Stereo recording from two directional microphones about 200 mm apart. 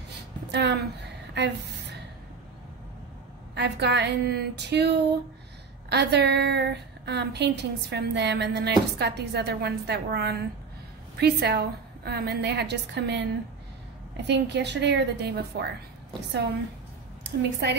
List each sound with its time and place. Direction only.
0.5 s a sound: 60° right (ahead or behind)
3.5 s a woman's voice: 60° right (ahead or behind)
17.2 s a woman's voice: 55° right (ahead or behind)